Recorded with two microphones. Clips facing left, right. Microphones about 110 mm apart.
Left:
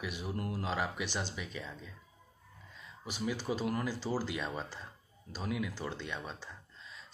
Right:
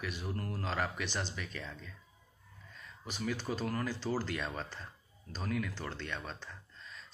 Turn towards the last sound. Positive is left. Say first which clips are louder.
# even
turn(degrees=10)  # may be behind; listen again after turning